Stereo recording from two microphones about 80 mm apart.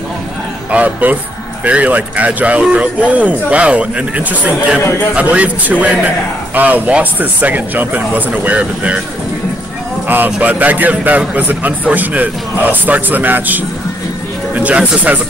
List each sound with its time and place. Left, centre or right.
0.7 s a man's voice: centre
10.0 s a man's voice: right